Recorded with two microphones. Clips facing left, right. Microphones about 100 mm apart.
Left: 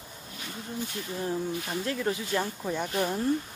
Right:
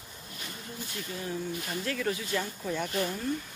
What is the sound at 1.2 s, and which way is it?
Speech, 25° left (ahead or behind).